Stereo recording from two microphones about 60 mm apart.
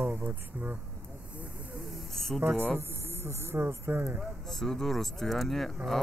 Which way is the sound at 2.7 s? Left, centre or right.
Right.